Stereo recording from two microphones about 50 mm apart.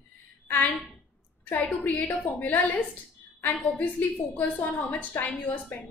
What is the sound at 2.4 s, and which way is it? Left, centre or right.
Speech, left.